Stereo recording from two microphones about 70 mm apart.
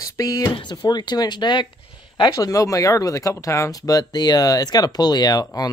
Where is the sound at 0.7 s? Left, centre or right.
Left.